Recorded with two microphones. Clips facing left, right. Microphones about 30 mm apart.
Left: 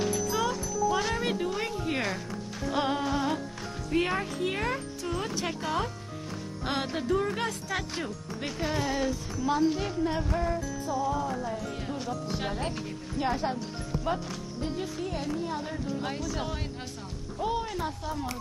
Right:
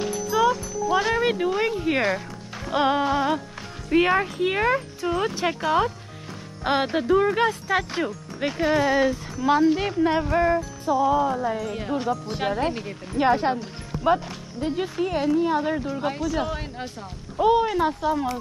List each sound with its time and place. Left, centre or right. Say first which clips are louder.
0.3 s speech: right 8 dB; centre
9.8 s speech: right 7 dB; right
10.3 s music: right 9 dB; right
10.9 s speech: right 10 dB; right
13.2 s speech: right 9 dB; right
15.9 s speech: right 7 dB; centre
17.4 s speech: right 11 dB; right